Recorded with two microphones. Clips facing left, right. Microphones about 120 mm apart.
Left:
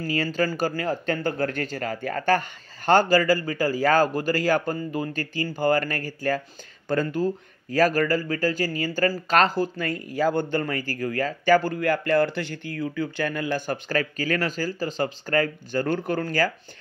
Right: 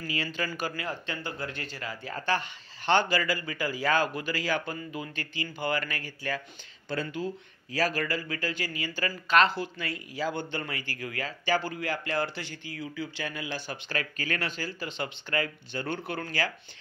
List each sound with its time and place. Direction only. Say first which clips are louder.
0.0 s speech: left 8 dB; 40° left (ahead or behind)